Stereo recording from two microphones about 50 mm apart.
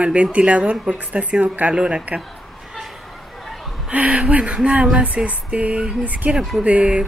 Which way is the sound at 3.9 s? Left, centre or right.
Right.